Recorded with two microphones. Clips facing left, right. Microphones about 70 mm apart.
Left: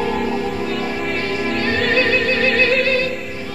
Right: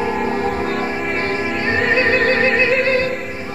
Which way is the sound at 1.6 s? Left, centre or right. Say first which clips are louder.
Right 1 dB; right.